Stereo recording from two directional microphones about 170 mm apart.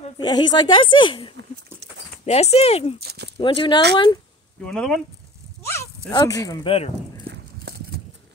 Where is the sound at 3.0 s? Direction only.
75° right (ahead or behind).